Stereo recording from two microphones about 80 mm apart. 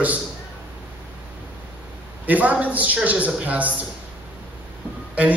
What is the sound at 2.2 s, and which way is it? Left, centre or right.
A man's voice, centre.